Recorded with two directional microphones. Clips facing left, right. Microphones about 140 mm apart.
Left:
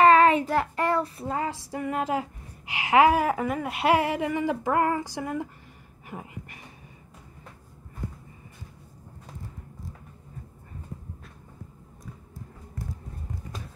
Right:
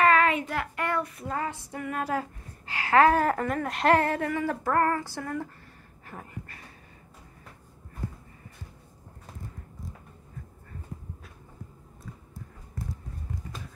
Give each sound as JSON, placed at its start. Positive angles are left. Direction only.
{"t": 0.0, "sound": "child singing", "side_deg": 30}
{"t": 1.7, "sound": "a woman's voice", "side_deg": 25}
{"t": 6.0, "sound": "a sound", "side_deg": 15}